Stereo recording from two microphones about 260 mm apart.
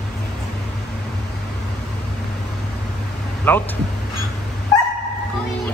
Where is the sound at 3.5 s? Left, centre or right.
Centre.